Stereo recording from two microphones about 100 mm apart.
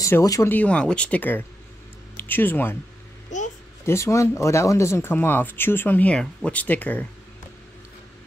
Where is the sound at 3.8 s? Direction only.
30° left (ahead or behind).